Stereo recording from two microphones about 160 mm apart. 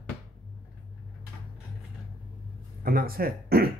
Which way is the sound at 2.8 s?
65° right (ahead or behind).